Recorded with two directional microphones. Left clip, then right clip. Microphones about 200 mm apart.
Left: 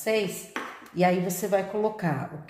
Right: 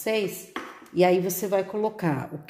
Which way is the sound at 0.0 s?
50° right (ahead or behind).